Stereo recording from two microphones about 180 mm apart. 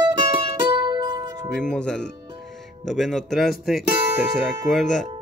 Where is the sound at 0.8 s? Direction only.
25° right (ahead or behind).